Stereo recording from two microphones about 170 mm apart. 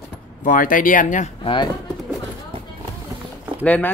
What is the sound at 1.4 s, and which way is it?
Speech, 30° left (ahead or behind).